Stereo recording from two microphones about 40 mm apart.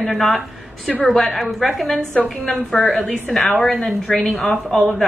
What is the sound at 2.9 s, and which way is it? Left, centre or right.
Speech, left.